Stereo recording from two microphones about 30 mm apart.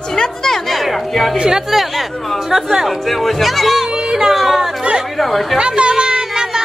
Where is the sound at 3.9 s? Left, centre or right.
Right.